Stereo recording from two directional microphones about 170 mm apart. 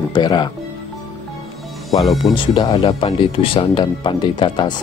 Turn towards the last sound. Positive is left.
turn(degrees=25)  # may be behind; listen again after turning